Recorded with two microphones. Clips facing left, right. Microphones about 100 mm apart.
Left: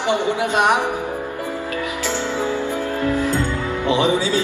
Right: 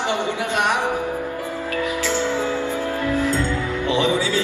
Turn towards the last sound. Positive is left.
turn(degrees=15)  # may be behind; listen again after turning